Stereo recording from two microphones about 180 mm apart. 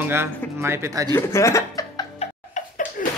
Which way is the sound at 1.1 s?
15° left (ahead or behind).